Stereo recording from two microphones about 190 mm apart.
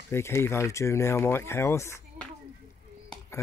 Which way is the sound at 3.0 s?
15° left (ahead or behind).